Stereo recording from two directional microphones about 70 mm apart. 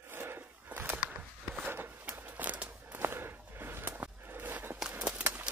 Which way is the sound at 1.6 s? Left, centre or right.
Right.